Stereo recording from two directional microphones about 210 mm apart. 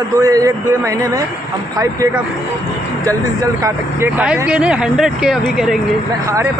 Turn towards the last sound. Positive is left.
turn(degrees=0)  # may be behind; listen again after turning